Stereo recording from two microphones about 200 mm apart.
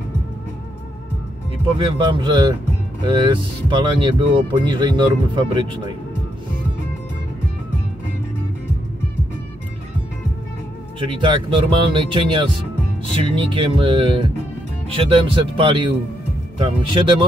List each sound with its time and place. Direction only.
1.8 s speech: 25° right (ahead or behind)
11.1 s speech: 25° right (ahead or behind)